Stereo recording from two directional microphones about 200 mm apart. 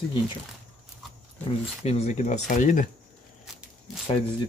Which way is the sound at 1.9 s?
35° left (ahead or behind).